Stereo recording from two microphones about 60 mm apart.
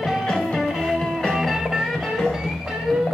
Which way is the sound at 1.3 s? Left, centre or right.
Centre.